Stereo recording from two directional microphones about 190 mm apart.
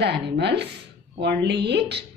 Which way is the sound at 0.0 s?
60° right (ahead or behind).